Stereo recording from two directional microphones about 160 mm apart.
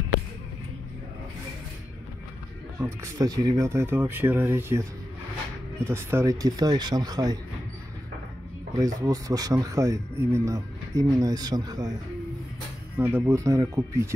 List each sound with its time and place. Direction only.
2.8 s speech: 20° right (ahead or behind)
5.9 s speech: 15° right (ahead or behind)
8.7 s speech: 20° right (ahead or behind)
12.9 s speech: 15° right (ahead or behind)